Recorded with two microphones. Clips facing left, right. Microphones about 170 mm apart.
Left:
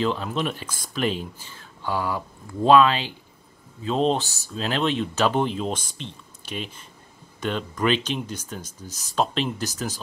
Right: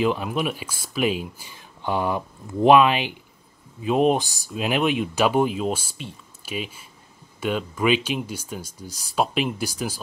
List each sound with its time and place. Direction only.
0.0 s speech: 10° right (ahead or behind)